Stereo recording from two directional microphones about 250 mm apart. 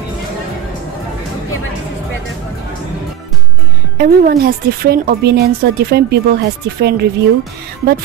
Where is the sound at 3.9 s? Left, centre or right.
Right.